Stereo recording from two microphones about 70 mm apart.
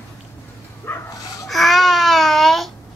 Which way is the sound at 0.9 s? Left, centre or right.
Left.